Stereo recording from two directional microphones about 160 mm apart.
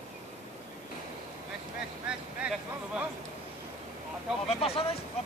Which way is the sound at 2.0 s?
5° right (ahead or behind).